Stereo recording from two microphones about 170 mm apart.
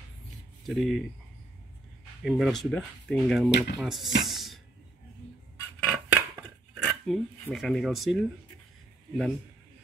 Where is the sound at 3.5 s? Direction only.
90° left.